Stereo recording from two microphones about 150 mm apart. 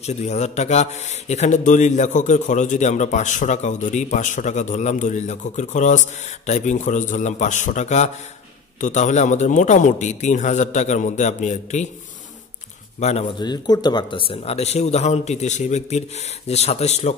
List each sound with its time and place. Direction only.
0.0 s a man's voice: 45° left (ahead or behind)
13.0 s a man's voice: 45° left (ahead or behind)
13.4 s a man's voice: 30° left (ahead or behind); by 17.1 s 45° left (ahead or behind)